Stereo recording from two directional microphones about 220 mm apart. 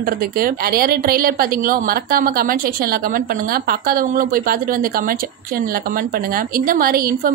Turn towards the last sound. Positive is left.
turn(degrees=-40)  # may be behind; listen again after turning